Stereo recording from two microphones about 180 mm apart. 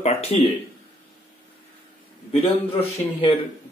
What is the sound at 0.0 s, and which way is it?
Speech, 35° left (ahead or behind).